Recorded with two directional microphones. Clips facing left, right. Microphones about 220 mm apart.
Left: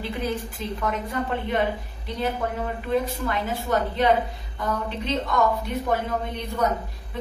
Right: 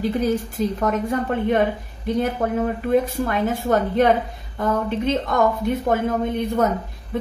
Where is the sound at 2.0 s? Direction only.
50° right (ahead or behind).